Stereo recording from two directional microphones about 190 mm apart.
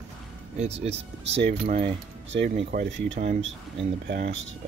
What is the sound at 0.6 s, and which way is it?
Speech, 35° right (ahead or behind).